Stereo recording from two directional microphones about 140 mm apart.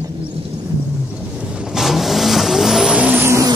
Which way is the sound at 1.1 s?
5° right (ahead or behind).